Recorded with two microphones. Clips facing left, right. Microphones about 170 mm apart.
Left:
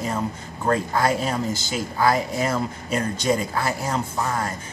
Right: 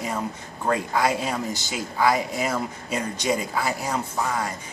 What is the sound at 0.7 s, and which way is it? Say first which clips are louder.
Speech: left 2 dB; 15° right (ahead or behind).